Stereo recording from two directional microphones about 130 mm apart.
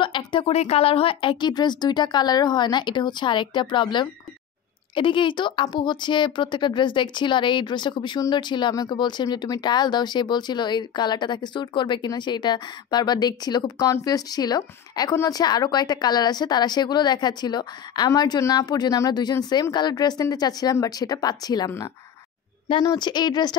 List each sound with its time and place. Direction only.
0.0 s speech: 40° left (ahead or behind)